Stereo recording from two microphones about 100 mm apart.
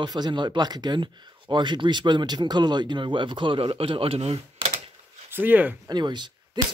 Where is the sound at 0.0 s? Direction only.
45° right (ahead or behind); by 4.4 s 80° right.